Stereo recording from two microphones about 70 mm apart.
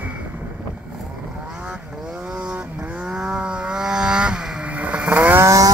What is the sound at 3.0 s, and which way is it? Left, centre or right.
Vehicle, centre.